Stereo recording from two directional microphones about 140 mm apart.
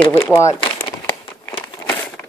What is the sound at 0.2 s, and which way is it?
Speech, 20° left (ahead or behind).